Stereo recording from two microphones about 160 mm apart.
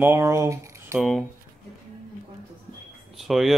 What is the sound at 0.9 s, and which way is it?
Speech, centre (ahead or behind).